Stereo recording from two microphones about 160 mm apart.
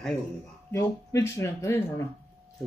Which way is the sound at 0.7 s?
15° left (ahead or behind).